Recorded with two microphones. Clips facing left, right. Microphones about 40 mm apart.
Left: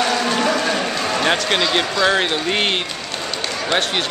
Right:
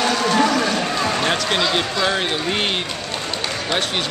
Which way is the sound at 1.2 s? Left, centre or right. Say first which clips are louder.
Left 2 dB; centre.